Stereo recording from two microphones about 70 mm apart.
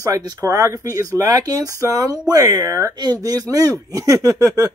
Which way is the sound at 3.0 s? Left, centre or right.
Right.